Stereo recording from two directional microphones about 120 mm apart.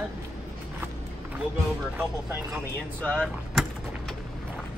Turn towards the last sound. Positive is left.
turn(degrees=5)  # may be behind; listen again after turning